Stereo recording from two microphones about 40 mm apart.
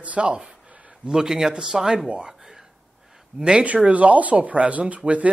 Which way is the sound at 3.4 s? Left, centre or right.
Right.